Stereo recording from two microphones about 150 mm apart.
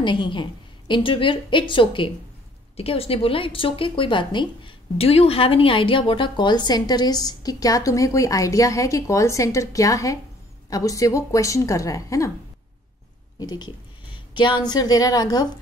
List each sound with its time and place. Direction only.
0.0 s a woman's voice: 30° left (ahead or behind)
13.4 s speech: 25° left (ahead or behind)